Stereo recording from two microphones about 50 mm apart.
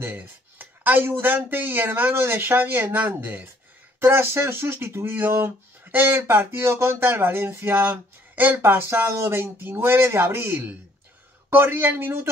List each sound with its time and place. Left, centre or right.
0.1 s speech: right